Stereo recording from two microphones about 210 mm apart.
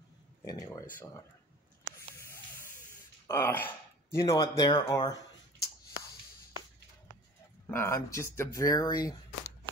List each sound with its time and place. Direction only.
0.5 s speech: 15° left (ahead or behind)
3.3 s speech: 10° left (ahead or behind)
7.6 s speech: 10° left (ahead or behind)